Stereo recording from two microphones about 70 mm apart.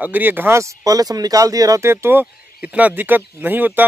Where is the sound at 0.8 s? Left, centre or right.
Right.